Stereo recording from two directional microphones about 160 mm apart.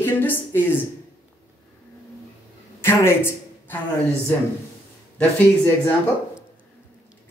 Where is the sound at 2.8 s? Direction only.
15° left (ahead or behind).